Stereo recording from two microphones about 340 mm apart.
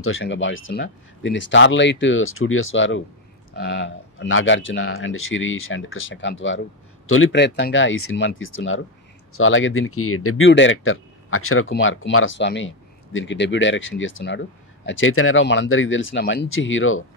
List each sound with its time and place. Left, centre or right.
0.0 s speech: left